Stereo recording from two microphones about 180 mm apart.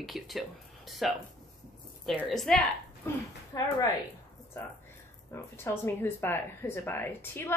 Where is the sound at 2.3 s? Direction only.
5° left (ahead or behind).